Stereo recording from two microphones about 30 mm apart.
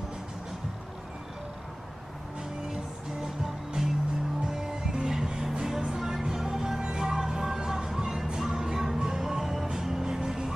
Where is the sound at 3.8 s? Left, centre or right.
Right.